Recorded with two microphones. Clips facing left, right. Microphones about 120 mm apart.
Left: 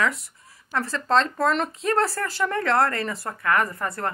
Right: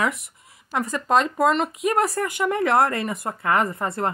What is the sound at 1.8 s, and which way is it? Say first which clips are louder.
Speech: right 2 dB; 15° right (ahead or behind).